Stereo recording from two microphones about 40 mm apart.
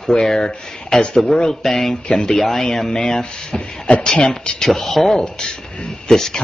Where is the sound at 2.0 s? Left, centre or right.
Left.